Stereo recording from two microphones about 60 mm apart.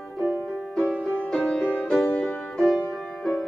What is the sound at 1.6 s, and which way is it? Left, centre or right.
Music, centre.